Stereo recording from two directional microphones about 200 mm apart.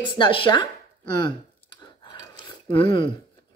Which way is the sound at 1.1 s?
20° left (ahead or behind).